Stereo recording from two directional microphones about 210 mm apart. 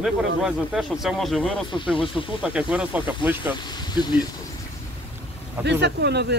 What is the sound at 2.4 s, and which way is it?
Speech, 5° right (ahead or behind).